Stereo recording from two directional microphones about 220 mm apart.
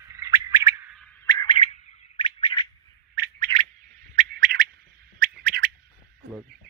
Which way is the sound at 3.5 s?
20° right (ahead or behind).